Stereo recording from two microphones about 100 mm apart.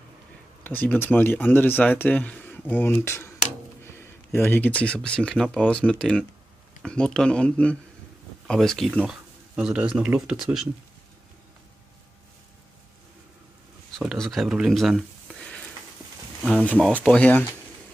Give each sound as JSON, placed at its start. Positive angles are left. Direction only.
{"t": 0.7, "sound": "speech", "side_deg": 20}
{"t": 3.8, "sound": "a sound", "side_deg": 25}
{"t": 4.5, "sound": "speech", "side_deg": 15}
{"t": 9.6, "sound": "speech", "side_deg": -10}
{"t": 13.9, "sound": "speech", "side_deg": 5}
{"t": 17.0, "sound": "speech", "side_deg": 10}